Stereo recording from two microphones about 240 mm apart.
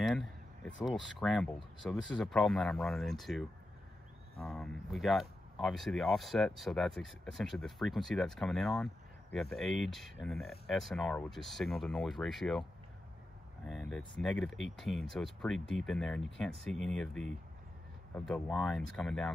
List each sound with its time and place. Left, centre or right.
0.0 s speech: centre
13.7 s speech: centre